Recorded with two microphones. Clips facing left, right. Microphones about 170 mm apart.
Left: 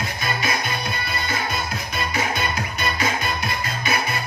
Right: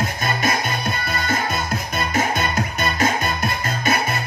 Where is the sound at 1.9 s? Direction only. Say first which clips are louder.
Right 3 dB; 45° right (ahead or behind).